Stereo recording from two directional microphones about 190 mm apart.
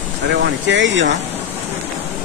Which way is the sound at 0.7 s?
70° right (ahead or behind).